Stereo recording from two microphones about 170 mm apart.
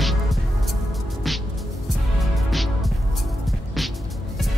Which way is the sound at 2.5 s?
Centre (ahead or behind).